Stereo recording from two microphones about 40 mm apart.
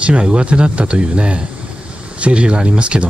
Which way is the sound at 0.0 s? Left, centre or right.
Right.